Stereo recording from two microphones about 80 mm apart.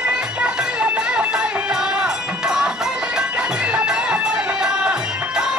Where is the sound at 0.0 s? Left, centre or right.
Centre.